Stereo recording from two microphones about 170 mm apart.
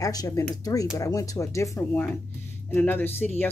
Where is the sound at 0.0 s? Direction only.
20° left (ahead or behind).